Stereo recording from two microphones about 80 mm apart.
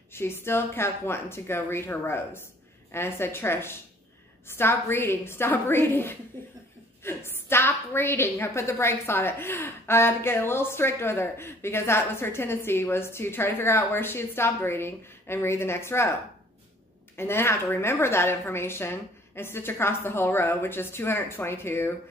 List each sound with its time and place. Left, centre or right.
0.1 s a woman's voice: left
17.2 s a woman's voice: left